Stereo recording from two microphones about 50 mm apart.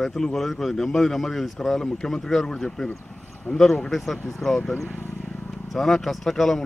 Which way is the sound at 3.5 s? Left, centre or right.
Left.